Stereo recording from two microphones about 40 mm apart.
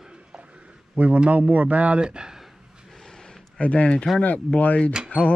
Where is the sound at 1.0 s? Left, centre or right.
Right.